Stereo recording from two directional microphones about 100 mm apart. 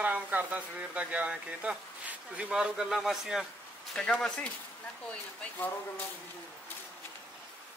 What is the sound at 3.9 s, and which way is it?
Speech, 10° left (ahead or behind).